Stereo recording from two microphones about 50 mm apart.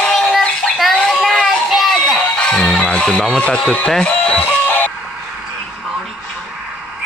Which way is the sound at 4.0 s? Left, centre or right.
Left.